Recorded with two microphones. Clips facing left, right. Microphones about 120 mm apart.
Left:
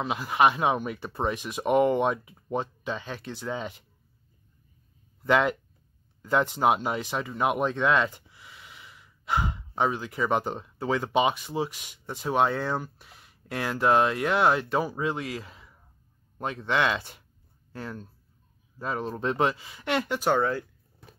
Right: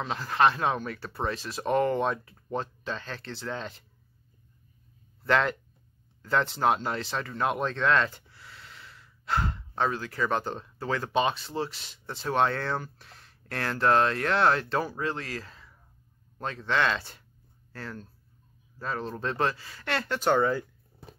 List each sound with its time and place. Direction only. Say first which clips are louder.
0.0 s speech: left 1 dB; 10° left (ahead or behind)
5.2 s speech: left 2 dB; 10° left (ahead or behind)